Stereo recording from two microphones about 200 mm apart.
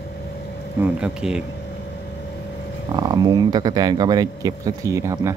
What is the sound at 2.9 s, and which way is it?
Speech, 20° right (ahead or behind).